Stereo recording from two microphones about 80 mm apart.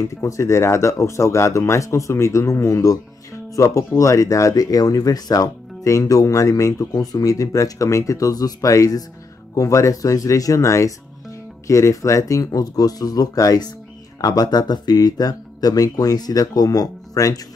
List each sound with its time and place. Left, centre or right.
0.0 s speech: left